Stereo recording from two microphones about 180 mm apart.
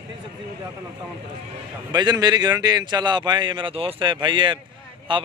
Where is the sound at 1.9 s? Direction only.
25° right (ahead or behind).